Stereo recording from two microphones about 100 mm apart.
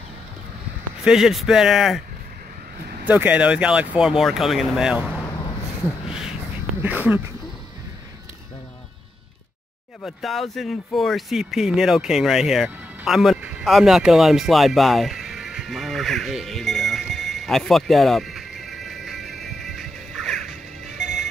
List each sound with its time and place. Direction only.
1.0 s speech: 5° right (ahead or behind)
3.1 s speech: 15° right (ahead or behind)
6.0 s a sound: 5° right (ahead or behind)
6.8 s speech: 20° right (ahead or behind)
10.0 s speech: centre (ahead or behind)
13.7 s music: 5° right (ahead or behind)